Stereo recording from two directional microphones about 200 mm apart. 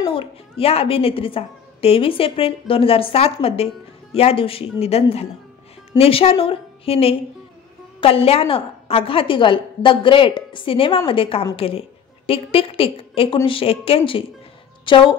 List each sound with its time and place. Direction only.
0.0 s a woman's voice: 25° left (ahead or behind)